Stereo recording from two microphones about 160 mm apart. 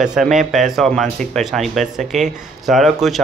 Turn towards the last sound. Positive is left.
turn(degrees=0)  # may be behind; listen again after turning